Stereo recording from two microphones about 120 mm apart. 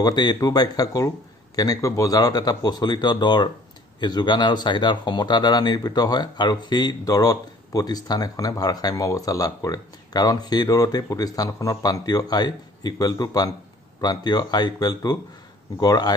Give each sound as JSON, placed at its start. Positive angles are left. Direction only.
{"t": 0.0, "sound": "speech", "side_deg": 40}